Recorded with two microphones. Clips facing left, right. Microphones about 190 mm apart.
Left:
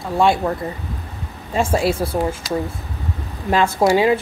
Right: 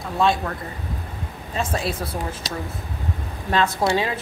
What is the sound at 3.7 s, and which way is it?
Speech, 30° left (ahead or behind).